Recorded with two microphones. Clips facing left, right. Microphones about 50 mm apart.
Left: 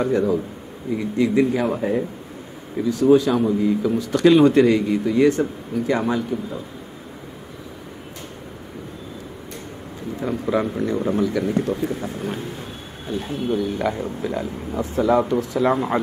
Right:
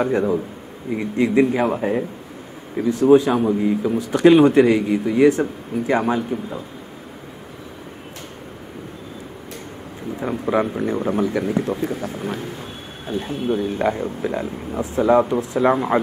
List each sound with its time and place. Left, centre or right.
0.0 s speech: right
2.8 s speech: right
10.2 s speech: centre
13.3 s speech: right; by 16.0 s centre